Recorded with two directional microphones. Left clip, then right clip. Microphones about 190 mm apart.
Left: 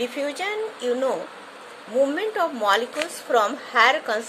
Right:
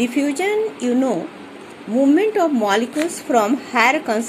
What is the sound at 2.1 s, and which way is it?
Speech, 20° right (ahead or behind).